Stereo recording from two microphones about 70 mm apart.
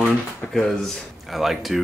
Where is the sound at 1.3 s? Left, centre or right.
Centre.